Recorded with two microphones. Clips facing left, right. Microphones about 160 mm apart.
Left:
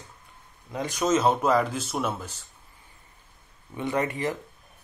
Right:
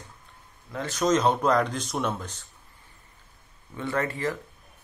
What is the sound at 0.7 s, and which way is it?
Speech, 15° left (ahead or behind).